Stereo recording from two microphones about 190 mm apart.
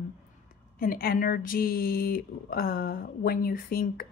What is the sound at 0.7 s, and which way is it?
A woman's voice, 50° left (ahead or behind).